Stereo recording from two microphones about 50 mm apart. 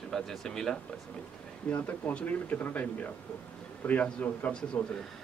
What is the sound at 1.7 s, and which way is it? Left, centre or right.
Speech, left.